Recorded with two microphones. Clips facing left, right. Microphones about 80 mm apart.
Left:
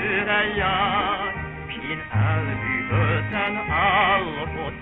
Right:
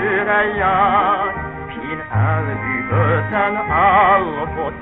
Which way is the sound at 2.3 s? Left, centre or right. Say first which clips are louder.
Right 5 dB; right.